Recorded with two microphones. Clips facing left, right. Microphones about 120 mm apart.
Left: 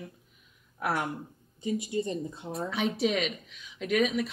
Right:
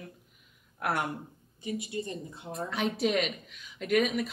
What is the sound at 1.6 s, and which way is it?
Speech, 25° left (ahead or behind).